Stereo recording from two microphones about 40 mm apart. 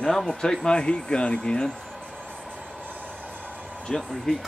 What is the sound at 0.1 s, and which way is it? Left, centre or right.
Speech, centre.